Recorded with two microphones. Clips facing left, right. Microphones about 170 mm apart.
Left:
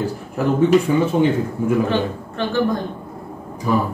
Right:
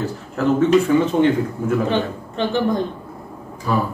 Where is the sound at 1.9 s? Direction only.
20° right (ahead or behind).